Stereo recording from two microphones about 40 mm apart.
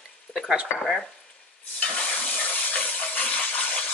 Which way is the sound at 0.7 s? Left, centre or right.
Centre.